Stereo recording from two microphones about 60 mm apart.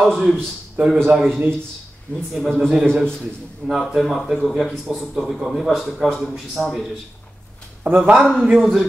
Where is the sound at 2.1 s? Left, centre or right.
Left.